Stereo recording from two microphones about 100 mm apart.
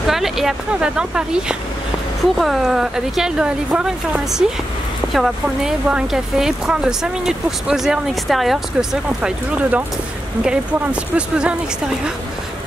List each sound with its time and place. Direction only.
0.0 s a woman's voice: 5° right (ahead or behind)
9.2 s speech: 10° right (ahead or behind)